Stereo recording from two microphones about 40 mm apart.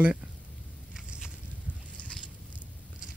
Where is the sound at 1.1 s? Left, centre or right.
Right.